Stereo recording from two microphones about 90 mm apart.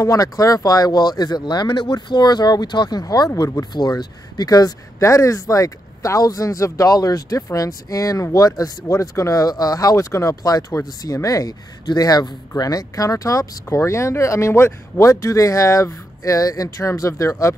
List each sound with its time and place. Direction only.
0.0 s speech: 40° left (ahead or behind)